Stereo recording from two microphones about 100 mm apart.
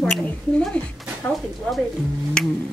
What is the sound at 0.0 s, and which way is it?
Speech, 10° left (ahead or behind).